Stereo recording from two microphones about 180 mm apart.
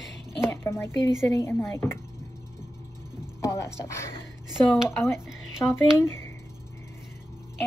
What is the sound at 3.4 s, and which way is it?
Speech, 15° left (ahead or behind).